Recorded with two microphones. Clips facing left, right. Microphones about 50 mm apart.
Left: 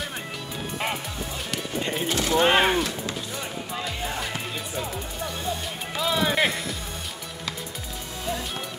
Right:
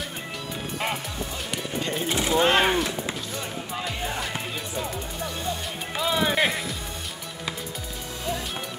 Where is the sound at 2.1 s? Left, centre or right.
Centre.